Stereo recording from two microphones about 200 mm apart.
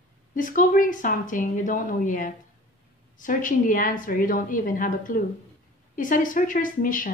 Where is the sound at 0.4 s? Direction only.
40° left (ahead or behind).